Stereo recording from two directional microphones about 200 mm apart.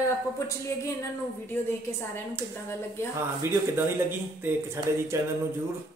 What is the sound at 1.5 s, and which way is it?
Speech, 10° left (ahead or behind).